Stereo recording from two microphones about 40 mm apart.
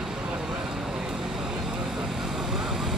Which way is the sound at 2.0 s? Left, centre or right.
Centre.